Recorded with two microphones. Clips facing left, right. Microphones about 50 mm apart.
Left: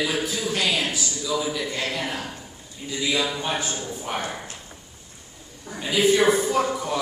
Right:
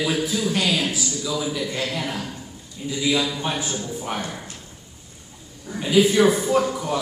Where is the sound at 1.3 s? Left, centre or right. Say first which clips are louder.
Left 1 dB; centre.